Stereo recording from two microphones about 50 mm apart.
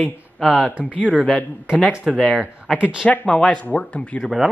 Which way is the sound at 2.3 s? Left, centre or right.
Centre.